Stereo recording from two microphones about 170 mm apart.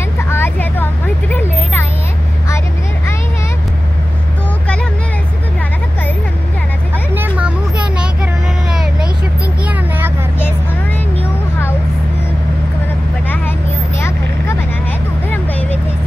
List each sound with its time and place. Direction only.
0.3 s vehicle: 10° left (ahead or behind)
7.2 s a sound: 10° right (ahead or behind)
8.6 s vehicle: centre (ahead or behind)
13.3 s vehicle: 15° left (ahead or behind)
15.2 s vehicle: 10° left (ahead or behind)